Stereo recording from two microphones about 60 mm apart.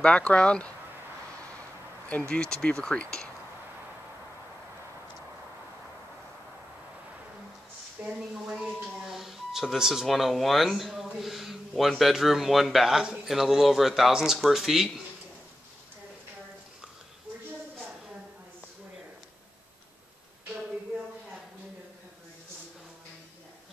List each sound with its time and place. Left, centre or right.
0.0 s speech: centre
2.0 s speech: left
8.0 s speech: centre